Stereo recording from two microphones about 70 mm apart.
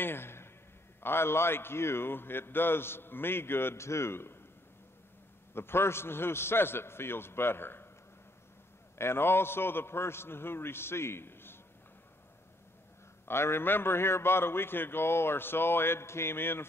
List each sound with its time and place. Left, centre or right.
0.0 s a sound: left
1.0 s a man's voice: left
5.5 s a man's voice: left
8.9 s a man's voice: left
13.2 s a man's voice: left